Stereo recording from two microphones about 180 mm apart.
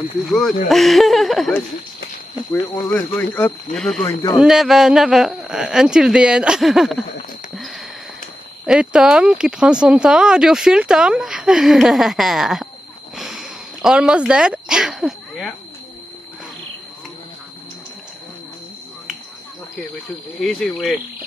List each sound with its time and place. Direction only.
0.2 s speech: centre (ahead or behind)
2.6 s speech: 15° left (ahead or behind)
4.0 s a man's voice: 20° left (ahead or behind)
4.4 s speech: centre (ahead or behind)
7.5 s sniff: centre (ahead or behind)
8.6 s speech: 5° right (ahead or behind)
13.1 s sniff: centre (ahead or behind)
20.3 s speech: 5° left (ahead or behind)